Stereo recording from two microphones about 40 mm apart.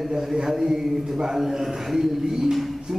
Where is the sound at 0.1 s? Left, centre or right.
Centre.